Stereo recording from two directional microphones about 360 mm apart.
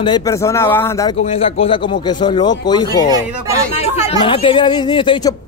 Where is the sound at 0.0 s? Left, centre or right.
Centre.